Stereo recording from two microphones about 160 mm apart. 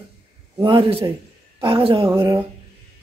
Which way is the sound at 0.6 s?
30° right (ahead or behind).